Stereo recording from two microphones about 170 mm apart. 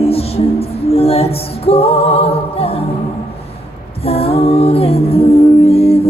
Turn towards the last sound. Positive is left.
turn(degrees=35)  # may be behind; listen again after turning